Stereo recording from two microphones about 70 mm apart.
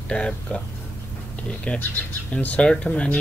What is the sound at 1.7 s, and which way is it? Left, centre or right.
Speech, centre.